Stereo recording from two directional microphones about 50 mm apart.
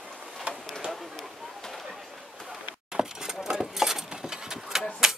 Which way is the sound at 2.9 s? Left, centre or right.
Centre.